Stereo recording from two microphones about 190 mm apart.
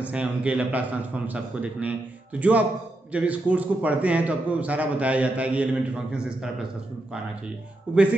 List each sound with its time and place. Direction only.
0.0 s a man's voice: 5° right (ahead or behind)
3.1 s a man's voice: 5° right (ahead or behind)
7.9 s a man's voice: 5° right (ahead or behind)